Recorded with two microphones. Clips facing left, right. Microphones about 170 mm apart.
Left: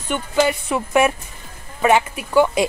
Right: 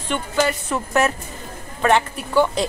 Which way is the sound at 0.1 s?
10° left (ahead or behind).